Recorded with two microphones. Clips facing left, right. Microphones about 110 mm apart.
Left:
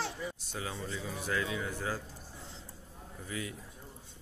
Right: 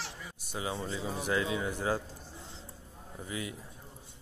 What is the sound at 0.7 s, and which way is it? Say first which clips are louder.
Speech: right 4 dB; 25° right (ahead or behind).